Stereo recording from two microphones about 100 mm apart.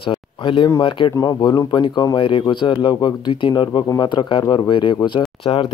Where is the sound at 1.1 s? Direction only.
40° left (ahead or behind).